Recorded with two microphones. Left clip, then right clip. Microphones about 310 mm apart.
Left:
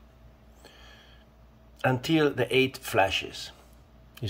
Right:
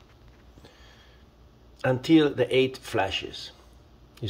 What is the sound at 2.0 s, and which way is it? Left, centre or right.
Speech, centre.